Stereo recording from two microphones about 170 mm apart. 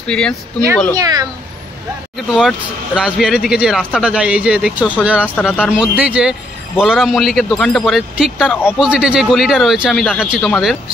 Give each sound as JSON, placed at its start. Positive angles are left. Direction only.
{"t": 0.1, "sound": "speech", "side_deg": 5}
{"t": 0.9, "sound": "speech", "side_deg": -20}
{"t": 2.1, "sound": "speech", "side_deg": -5}
{"t": 5.3, "sound": "speech", "side_deg": 10}
{"t": 5.6, "sound": "speech", "side_deg": -5}